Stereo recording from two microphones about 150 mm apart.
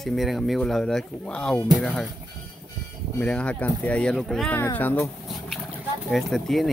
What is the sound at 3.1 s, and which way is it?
Speech, 5° left (ahead or behind).